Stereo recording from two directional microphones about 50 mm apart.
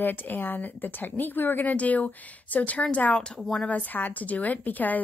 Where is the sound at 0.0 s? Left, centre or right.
Left.